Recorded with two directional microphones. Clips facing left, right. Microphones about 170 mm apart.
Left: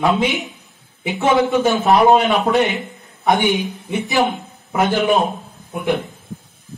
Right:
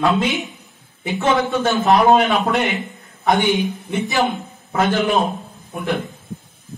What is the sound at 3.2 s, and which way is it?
A man's voice, 15° left (ahead or behind).